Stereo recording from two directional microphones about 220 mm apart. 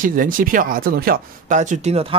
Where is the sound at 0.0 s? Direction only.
40° right (ahead or behind).